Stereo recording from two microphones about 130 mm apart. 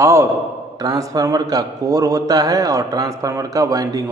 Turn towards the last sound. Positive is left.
turn(degrees=-30)  # may be behind; listen again after turning